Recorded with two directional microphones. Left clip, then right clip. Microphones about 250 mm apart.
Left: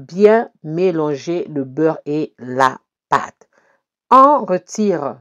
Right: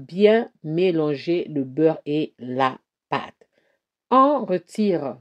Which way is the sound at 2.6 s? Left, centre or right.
Centre.